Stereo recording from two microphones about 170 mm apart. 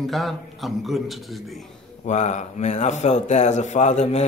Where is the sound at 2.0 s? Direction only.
40° left (ahead or behind).